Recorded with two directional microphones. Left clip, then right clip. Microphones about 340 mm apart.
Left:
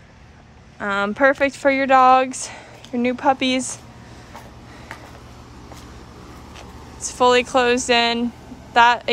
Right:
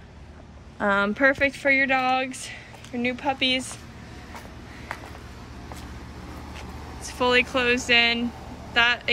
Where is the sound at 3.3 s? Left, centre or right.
Centre.